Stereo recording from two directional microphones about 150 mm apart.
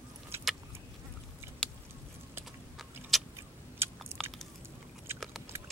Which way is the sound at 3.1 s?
Centre (ahead or behind).